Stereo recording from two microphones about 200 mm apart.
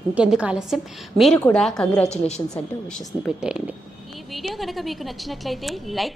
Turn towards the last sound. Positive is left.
turn(degrees=0)  # may be behind; listen again after turning